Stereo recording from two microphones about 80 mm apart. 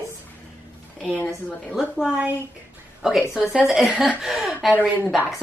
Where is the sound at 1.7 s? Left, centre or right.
Centre.